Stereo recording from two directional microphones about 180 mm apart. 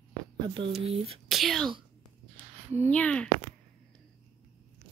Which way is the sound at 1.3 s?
Centre (ahead or behind).